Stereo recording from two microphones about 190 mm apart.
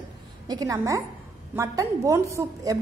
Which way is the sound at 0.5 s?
20° right (ahead or behind).